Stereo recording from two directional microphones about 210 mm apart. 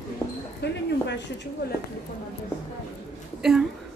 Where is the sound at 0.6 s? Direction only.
50° left (ahead or behind).